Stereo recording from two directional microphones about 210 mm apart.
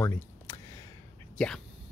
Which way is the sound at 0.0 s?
10° left (ahead or behind).